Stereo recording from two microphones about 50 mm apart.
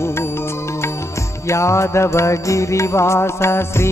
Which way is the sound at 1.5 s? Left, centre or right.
Left.